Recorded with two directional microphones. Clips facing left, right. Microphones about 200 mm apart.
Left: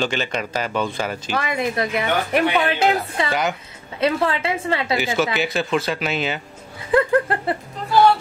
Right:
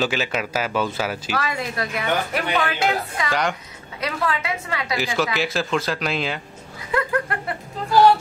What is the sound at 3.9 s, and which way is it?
A woman's voice, 25° left (ahead or behind).